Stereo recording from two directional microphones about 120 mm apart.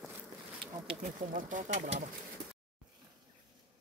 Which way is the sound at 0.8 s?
80° right.